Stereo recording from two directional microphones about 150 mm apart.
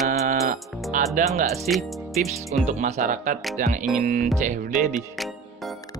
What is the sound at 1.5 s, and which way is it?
Speech, centre (ahead or behind).